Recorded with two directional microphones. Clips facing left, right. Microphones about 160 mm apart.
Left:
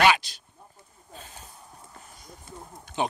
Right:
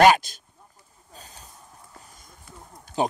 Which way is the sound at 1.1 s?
40° right (ahead or behind).